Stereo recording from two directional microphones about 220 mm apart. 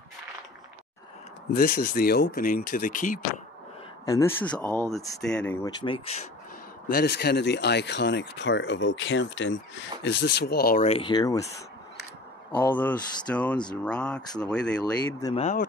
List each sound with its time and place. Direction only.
1.5 s speech: 40° left (ahead or behind)
4.0 s speech: 15° left (ahead or behind)
5.2 s speech: 5° left (ahead or behind)
5.8 s speech: 25° left (ahead or behind)
6.9 s speech: 45° left (ahead or behind)
10.9 s speech: 20° left (ahead or behind)
12.5 s speech: 10° left (ahead or behind)
15.3 s speech: 30° left (ahead or behind)